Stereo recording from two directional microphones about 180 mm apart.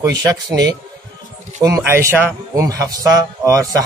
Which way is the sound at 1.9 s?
15° right (ahead or behind).